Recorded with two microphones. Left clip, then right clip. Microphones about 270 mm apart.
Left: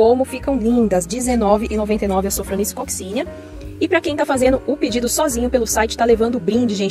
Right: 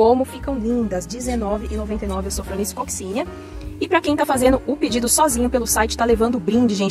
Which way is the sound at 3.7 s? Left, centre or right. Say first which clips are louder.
Left 1 dB; centre.